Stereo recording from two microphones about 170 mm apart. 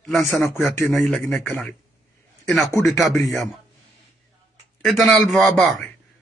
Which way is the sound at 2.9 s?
Centre (ahead or behind).